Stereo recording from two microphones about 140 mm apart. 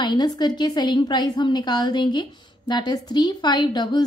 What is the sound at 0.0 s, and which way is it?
A woman's voice, 30° left (ahead or behind).